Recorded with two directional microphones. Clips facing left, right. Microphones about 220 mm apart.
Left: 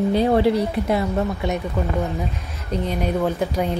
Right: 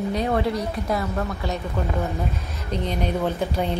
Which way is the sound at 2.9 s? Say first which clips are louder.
Left 3 dB; 5° left (ahead or behind).